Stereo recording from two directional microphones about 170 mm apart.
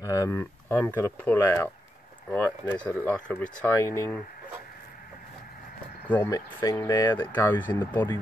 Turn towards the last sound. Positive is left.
turn(degrees=15)  # may be behind; listen again after turning